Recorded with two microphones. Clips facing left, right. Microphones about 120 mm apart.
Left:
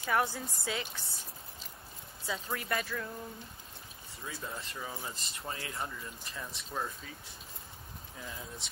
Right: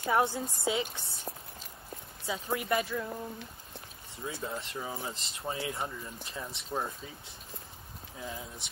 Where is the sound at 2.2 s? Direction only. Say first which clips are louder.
Right 4 dB; 20° right (ahead or behind).